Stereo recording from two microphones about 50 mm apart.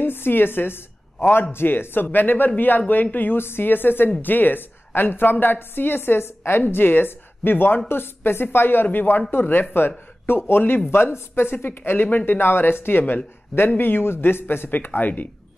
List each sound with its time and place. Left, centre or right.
0.0 s a woman's voice: left
14.9 s speech: left